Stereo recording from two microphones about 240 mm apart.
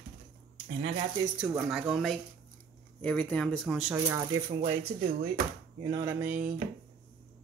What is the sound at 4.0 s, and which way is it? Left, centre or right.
Speech, centre.